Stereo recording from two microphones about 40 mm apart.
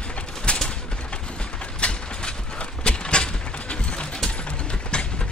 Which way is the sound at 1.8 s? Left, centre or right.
Left.